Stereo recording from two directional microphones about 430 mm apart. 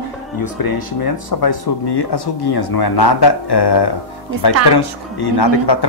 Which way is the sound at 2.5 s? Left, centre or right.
Left.